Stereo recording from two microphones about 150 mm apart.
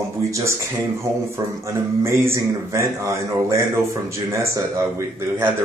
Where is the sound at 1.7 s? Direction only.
20° right (ahead or behind).